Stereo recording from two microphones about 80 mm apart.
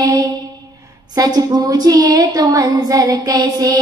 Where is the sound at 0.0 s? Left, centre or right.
Right.